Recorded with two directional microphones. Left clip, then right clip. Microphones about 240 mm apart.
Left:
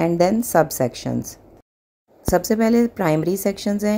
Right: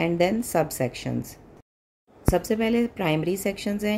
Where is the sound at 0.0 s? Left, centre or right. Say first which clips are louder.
Left 5 dB; centre.